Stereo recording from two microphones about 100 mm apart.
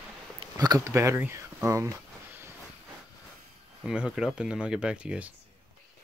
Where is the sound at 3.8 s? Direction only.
5° right (ahead or behind).